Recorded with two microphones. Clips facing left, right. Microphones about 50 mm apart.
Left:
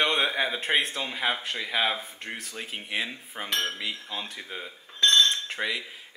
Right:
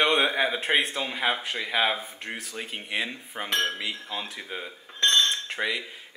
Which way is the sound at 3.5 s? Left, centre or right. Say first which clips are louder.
Right 2 dB; centre.